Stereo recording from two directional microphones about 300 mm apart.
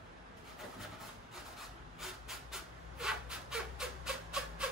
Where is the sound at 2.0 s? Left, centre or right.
Centre.